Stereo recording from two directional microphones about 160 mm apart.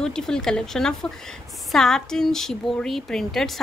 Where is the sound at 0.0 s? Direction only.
5° left (ahead or behind).